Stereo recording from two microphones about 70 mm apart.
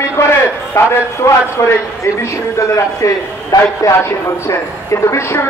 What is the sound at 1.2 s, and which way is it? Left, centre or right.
Speech, left.